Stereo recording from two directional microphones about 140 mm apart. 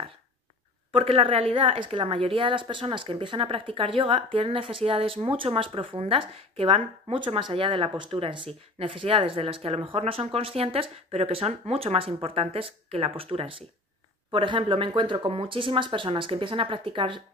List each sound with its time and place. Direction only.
0.9 s a woman's voice: 45° right (ahead or behind)